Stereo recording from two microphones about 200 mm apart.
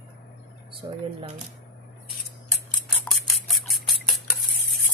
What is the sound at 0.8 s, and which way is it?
Speech, 20° right (ahead or behind).